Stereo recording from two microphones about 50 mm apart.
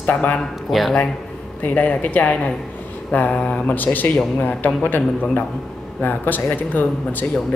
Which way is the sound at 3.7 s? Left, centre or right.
Left.